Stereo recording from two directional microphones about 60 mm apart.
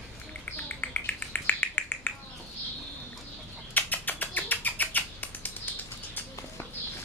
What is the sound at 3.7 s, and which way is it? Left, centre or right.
Bird, left.